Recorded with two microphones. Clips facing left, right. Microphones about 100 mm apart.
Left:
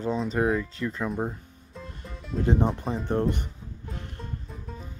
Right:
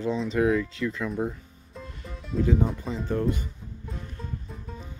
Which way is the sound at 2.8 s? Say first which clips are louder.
Left 2 dB; 55° left (ahead or behind).